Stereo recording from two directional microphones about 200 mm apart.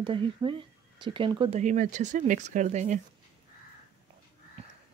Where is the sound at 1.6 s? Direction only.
40° right (ahead or behind).